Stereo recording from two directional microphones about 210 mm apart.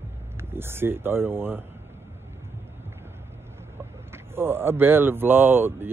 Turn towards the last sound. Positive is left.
turn(degrees=-10)  # may be behind; listen again after turning